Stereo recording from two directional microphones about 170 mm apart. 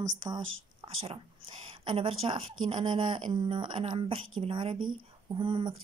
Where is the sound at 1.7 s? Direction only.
35° right (ahead or behind).